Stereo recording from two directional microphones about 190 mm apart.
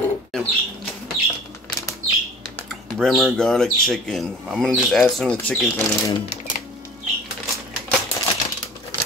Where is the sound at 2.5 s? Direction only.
Centre (ahead or behind).